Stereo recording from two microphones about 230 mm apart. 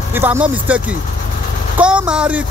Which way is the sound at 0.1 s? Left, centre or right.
Centre.